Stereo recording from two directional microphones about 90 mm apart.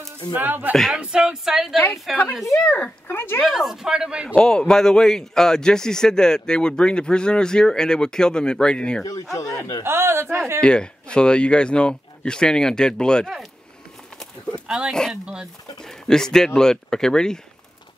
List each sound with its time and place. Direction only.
0.3 s speech: 20° right (ahead or behind)
0.9 s a woman's voice: 10° right (ahead or behind)
2.6 s speech: 15° left (ahead or behind)
3.4 s speech: 5° right (ahead or behind)
4.4 s a man's voice: 10° left (ahead or behind)
9.3 s speech: 40° left (ahead or behind)
9.8 s a woman's voice: 25° right (ahead or behind)
10.6 s a man's voice: 10° left (ahead or behind)
14.7 s speech: 5° right (ahead or behind)
15.8 s a man's voice: 5° left (ahead or behind)